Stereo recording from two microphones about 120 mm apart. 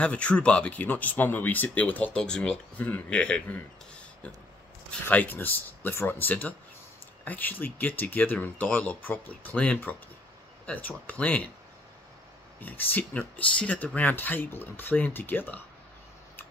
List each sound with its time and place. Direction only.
0.0 s speech: 10° left (ahead or behind)
5.0 s speech: 15° left (ahead or behind)
12.5 s speech: 15° left (ahead or behind)